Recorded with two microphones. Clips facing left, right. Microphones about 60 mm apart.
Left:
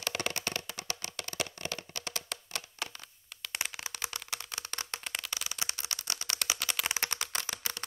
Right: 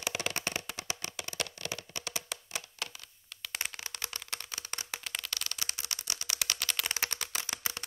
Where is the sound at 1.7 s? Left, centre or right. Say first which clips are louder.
Even; centre.